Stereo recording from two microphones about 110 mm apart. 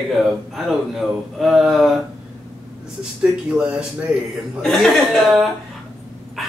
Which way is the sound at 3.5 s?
10° right (ahead or behind).